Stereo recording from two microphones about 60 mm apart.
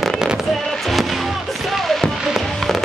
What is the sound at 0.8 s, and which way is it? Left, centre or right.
Music, centre.